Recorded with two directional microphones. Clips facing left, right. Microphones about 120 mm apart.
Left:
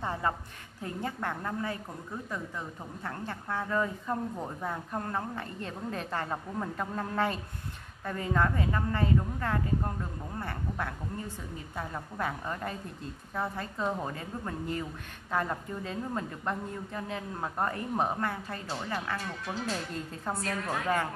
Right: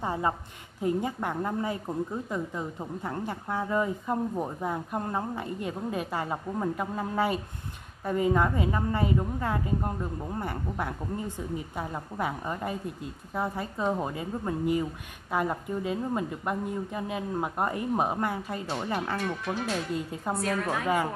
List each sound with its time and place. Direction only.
0.0 s a woman's voice: 15° right (ahead or behind)
19.1 s speech: 65° right (ahead or behind)
19.7 s speech: 10° right (ahead or behind)